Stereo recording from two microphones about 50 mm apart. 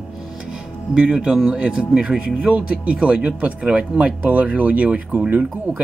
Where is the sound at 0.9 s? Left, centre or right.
Right.